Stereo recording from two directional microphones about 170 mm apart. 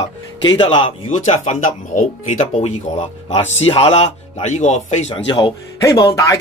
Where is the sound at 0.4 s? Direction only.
25° left (ahead or behind).